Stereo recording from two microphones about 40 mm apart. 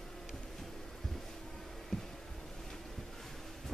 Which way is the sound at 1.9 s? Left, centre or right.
Centre.